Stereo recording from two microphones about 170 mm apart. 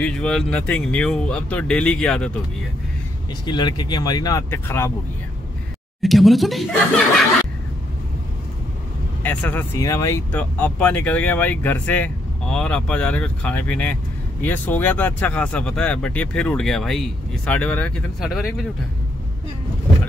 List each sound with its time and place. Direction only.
0.0 s speech: 5° left (ahead or behind)
3.4 s speech: 25° left (ahead or behind)
6.0 s speech: centre (ahead or behind)
9.2 s speech: 10° left (ahead or behind)